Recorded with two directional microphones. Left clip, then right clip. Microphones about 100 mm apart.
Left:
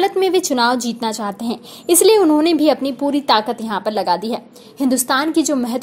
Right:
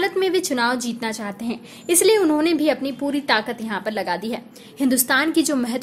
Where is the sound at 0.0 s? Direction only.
45° left (ahead or behind).